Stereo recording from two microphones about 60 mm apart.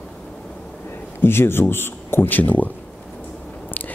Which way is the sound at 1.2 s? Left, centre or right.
Left.